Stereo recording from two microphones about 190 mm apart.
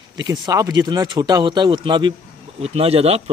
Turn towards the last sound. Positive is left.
turn(degrees=-30)  # may be behind; listen again after turning